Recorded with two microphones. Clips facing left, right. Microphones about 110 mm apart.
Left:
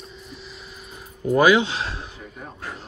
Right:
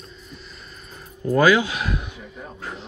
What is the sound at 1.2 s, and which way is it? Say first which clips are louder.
Speech: even; 20° left (ahead or behind).